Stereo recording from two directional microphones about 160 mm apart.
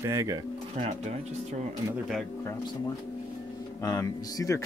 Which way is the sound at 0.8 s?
45° right (ahead or behind).